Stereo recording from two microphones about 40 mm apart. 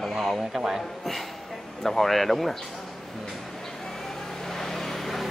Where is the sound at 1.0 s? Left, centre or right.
Centre.